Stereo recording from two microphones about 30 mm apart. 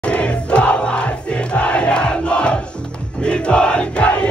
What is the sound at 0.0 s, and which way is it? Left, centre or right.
Crowd, left.